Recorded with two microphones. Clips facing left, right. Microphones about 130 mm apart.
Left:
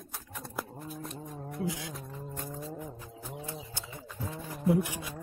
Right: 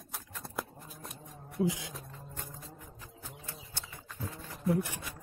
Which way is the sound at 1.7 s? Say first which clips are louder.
Right 1 dB; 20° right (ahead or behind).